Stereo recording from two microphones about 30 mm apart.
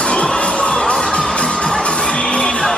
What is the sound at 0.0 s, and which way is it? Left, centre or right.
Music, left.